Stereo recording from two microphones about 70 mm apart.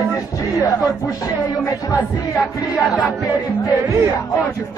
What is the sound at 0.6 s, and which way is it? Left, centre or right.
Speech, left.